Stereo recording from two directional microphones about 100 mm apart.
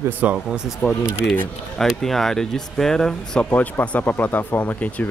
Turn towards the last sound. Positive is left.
turn(degrees=15)  # may be behind; listen again after turning